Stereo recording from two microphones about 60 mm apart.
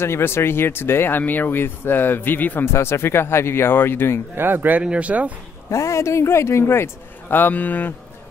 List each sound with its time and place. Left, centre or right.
0.0 s speech: left
2.6 s speech: left
4.4 s speech: right
4.8 s speech: right
5.7 s speech: left
6.6 s speech: left